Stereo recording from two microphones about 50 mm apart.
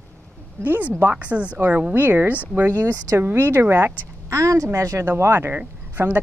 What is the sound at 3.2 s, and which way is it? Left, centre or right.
Speech, right.